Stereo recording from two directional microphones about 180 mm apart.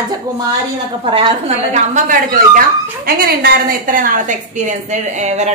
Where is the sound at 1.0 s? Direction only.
30° right (ahead or behind).